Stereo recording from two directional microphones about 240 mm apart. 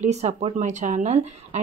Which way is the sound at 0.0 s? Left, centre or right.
Right.